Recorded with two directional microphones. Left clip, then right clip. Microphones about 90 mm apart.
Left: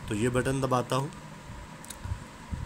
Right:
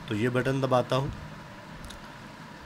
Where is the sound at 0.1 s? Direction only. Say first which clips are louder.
Right 1 dB; 15° left (ahead or behind).